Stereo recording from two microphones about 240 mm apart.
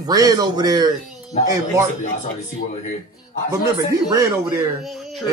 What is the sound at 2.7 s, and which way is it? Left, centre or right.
Speech, left.